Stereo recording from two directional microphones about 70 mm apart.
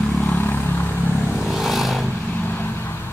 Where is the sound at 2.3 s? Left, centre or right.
Left.